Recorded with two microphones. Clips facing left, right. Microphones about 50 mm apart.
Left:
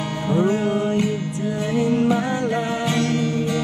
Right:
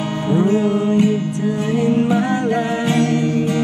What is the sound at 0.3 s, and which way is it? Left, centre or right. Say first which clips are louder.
Music: right 3 dB; right.